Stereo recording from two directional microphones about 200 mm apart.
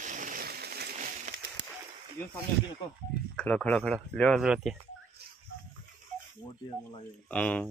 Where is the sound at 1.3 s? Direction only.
35° right (ahead or behind).